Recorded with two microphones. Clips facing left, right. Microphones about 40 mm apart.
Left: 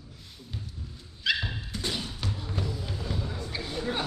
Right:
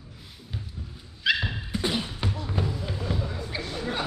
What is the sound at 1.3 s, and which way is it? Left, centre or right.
Beatboxing, right.